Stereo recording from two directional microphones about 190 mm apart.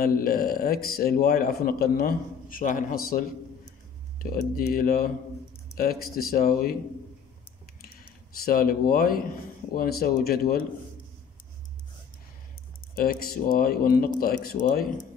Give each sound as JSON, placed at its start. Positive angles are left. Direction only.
{"t": 0.0, "sound": "a man's voice", "side_deg": 50}
{"t": 7.8, "sound": "a sound", "side_deg": 50}
{"t": 9.8, "sound": "a man's voice", "side_deg": 55}
{"t": 12.9, "sound": "a man's voice", "side_deg": 50}